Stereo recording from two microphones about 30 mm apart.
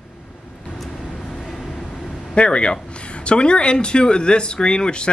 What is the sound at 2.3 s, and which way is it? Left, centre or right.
Speech, left.